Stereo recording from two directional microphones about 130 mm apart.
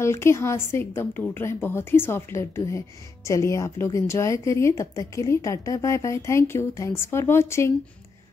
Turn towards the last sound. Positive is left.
turn(degrees=20)  # may be behind; listen again after turning